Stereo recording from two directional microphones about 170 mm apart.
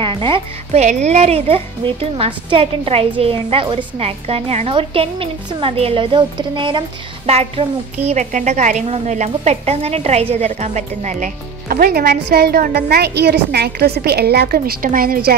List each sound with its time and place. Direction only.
0.0 s speech: 30° right (ahead or behind)
0.8 s a woman's voice: 40° right (ahead or behind); by 15.3 s 60° right (ahead or behind)